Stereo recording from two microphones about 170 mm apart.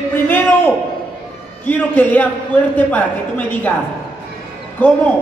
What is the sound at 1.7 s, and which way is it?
A man's voice, 10° left (ahead or behind).